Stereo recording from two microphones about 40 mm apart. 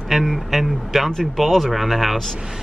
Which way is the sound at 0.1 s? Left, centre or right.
Centre.